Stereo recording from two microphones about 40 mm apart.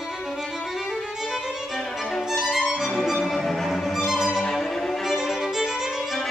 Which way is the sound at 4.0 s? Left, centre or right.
Centre.